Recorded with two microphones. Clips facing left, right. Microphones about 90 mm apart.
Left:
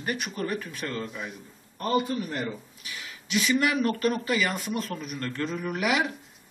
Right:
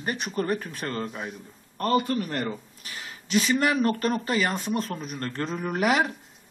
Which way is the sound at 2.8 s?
40° right (ahead or behind).